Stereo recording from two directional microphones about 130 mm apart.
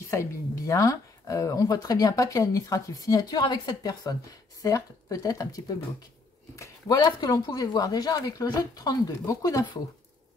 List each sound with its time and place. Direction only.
0.1 s speech: 20° left (ahead or behind)